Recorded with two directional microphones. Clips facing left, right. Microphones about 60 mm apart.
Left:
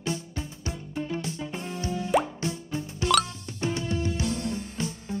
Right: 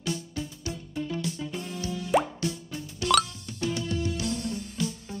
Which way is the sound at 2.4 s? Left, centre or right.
Left.